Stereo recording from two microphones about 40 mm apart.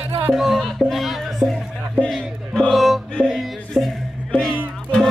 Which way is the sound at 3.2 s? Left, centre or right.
Left.